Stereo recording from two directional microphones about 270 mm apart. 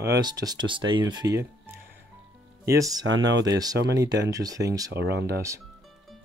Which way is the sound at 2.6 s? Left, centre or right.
Centre.